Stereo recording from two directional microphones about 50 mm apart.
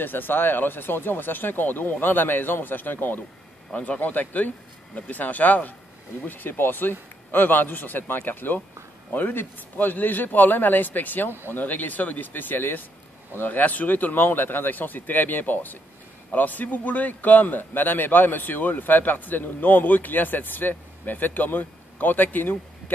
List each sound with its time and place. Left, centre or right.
0.0 s a man's voice: left
3.7 s a man's voice: left